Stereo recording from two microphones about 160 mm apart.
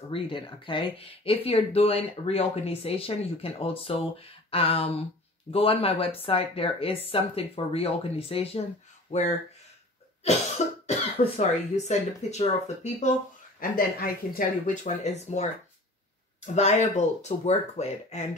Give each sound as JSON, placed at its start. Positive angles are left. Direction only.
{"t": 0.1, "sound": "speech", "side_deg": 35}
{"t": 9.1, "sound": "speech", "side_deg": 45}
{"t": 10.6, "sound": "cough", "side_deg": 45}
{"t": 11.1, "sound": "speech", "side_deg": 45}
{"t": 13.6, "sound": "speech", "side_deg": 65}
{"t": 16.5, "sound": "speech", "side_deg": 45}